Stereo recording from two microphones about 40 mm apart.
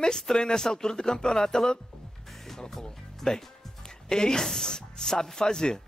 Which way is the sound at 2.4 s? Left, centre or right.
Centre.